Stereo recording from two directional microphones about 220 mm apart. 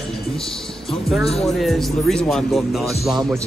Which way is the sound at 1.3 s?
Centre (ahead or behind).